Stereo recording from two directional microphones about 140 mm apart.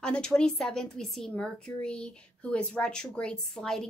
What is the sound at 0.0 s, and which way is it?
A woman's voice, 5° left (ahead or behind).